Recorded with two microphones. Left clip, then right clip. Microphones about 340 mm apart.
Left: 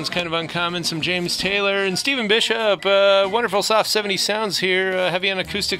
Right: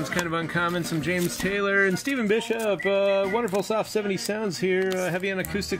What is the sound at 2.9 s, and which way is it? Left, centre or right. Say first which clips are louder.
Music: left 8 dB; centre.